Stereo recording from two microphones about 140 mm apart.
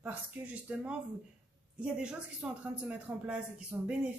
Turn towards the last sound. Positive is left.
turn(degrees=-10)  # may be behind; listen again after turning